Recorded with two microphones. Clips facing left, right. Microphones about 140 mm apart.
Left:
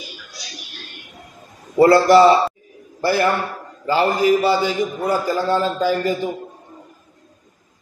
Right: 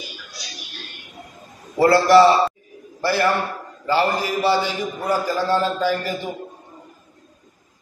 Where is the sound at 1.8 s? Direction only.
20° left (ahead or behind).